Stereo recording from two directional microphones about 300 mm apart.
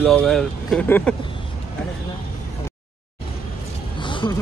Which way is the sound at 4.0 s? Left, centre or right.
Centre.